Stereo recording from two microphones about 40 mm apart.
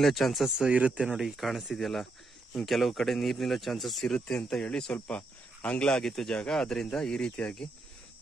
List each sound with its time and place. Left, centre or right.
0.0 s speech: centre
0.7 s speech: right
0.9 s speech: centre
4.3 s speech: centre
5.0 s cricket: left
5.8 s speech: centre